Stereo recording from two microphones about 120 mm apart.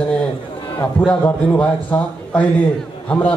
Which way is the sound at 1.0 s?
10° left (ahead or behind).